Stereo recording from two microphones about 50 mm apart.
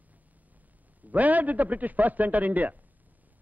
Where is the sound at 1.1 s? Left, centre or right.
Right.